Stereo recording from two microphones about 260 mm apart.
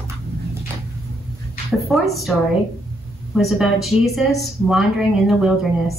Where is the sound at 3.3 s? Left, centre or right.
Centre.